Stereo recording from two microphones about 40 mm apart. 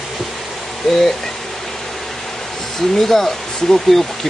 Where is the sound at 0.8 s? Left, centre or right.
Centre.